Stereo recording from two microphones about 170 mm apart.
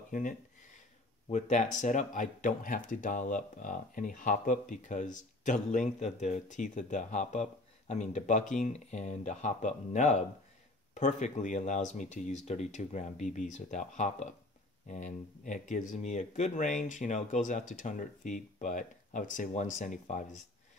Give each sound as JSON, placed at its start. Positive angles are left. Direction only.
{"t": 0.1, "sound": "speech", "side_deg": 50}
{"t": 1.3, "sound": "speech", "side_deg": 45}